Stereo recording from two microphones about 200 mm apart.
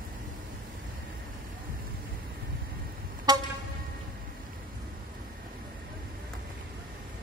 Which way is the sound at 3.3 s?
20° right (ahead or behind).